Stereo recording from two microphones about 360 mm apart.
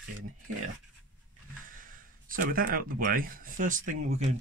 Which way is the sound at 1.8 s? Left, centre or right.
Right.